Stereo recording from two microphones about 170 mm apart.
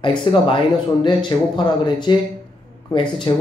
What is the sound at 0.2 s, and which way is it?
Speech, 30° left (ahead or behind).